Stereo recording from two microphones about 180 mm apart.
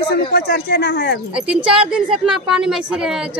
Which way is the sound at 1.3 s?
5° right (ahead or behind).